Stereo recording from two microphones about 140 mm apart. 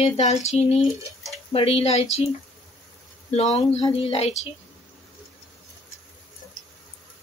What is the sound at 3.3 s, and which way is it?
Speech, 50° left (ahead or behind).